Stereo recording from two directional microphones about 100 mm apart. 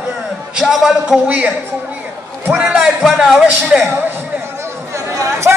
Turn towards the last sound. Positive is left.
turn(degrees=-30)  # may be behind; listen again after turning